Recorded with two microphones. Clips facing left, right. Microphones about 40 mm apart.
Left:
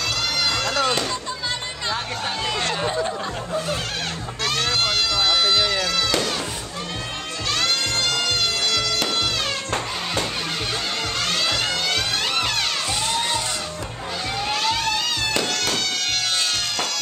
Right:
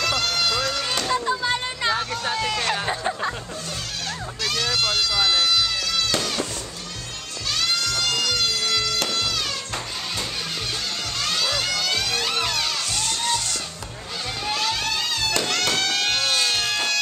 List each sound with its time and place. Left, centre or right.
0.7 s a sound: left
1.1 s a sound: right
2.3 s a sound: left
2.7 s a sound: centre
4.5 s run: left
5.4 s music: left
6.1 s children playing: centre
7.5 s music: left
11.1 s music: left
13.0 s music: left
14.5 s music: left
16.0 s music: right
16.4 s music: centre